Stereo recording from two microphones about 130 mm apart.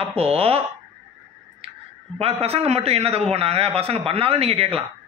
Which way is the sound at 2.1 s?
50° right (ahead or behind).